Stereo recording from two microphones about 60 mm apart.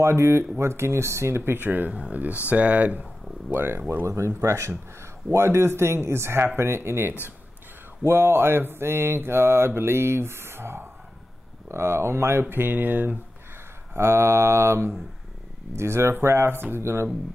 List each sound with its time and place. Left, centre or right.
0.0 s mantra: right
2.0 s speech: right
3.4 s speech: right
4.0 s mantra: right
11.7 s speech: right
13.9 s mantra: right